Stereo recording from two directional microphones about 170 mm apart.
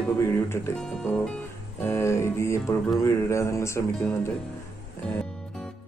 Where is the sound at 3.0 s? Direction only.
15° left (ahead or behind).